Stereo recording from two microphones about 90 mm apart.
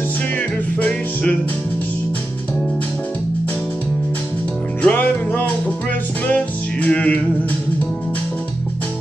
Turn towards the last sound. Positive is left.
turn(degrees=15)  # may be behind; listen again after turning